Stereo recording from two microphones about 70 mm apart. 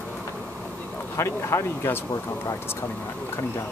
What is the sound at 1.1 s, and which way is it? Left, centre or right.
Speech, left.